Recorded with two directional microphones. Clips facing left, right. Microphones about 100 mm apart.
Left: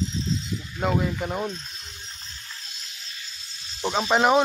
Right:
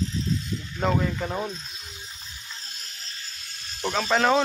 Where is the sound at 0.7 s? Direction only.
5° left (ahead or behind).